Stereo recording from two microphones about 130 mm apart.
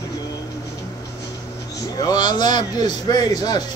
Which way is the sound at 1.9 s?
30° left (ahead or behind).